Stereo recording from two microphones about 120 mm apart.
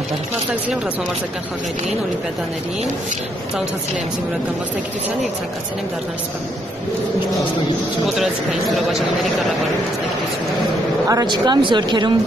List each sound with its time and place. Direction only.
8.2 s speech: centre (ahead or behind)
11.1 s speech: 35° right (ahead or behind)